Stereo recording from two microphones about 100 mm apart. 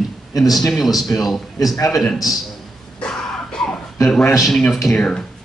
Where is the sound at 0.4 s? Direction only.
Centre (ahead or behind).